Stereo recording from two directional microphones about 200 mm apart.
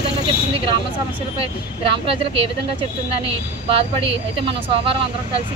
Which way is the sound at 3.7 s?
25° right (ahead or behind).